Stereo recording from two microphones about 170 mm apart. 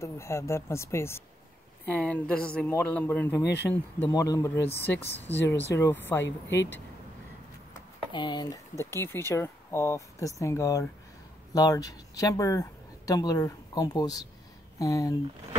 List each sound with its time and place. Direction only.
0.0 s speech: 15° left (ahead or behind)
3.4 s speech: 85° left
4.1 s speech: 20° left (ahead or behind)
6.2 s speech: 90° left
8.1 s speech: 25° left (ahead or behind)